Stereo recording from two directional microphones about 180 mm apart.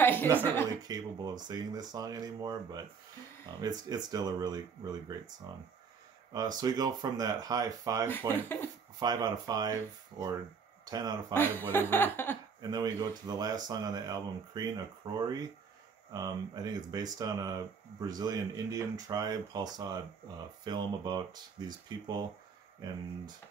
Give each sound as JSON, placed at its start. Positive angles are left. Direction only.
{"t": 0.0, "sound": "chuckle", "side_deg": 10}
{"t": 0.8, "sound": "speech", "side_deg": -20}
{"t": 8.3, "sound": "speech", "side_deg": 10}
{"t": 9.0, "sound": "speech", "side_deg": -20}
{"t": 11.3, "sound": "speech", "side_deg": 10}
{"t": 12.6, "sound": "speech", "side_deg": -25}